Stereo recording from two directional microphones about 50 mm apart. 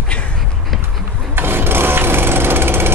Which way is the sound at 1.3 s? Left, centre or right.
Right.